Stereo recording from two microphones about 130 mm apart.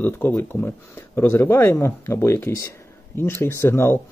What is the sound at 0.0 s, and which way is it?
Speech, 20° left (ahead or behind).